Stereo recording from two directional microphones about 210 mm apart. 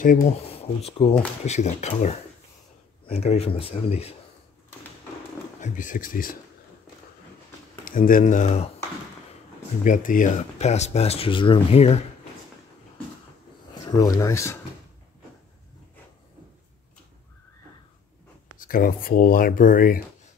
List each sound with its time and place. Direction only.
0.5 s speech: 30° left (ahead or behind)
5.6 s speech: 40° left (ahead or behind)
7.8 s speech: 40° left (ahead or behind)
9.8 s speech: 40° left (ahead or behind)
13.8 s speech: 20° left (ahead or behind)
18.6 s speech: 45° left (ahead or behind)